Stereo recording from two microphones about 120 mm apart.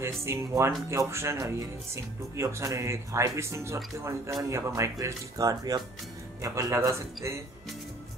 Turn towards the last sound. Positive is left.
turn(degrees=-25)  # may be behind; listen again after turning